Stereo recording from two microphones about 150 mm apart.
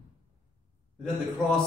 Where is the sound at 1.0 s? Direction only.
Centre (ahead or behind).